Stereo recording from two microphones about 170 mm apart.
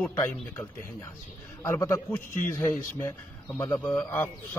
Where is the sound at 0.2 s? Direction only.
15° left (ahead or behind).